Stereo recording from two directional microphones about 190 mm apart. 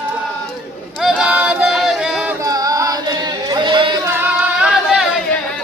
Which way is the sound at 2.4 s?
20° right (ahead or behind).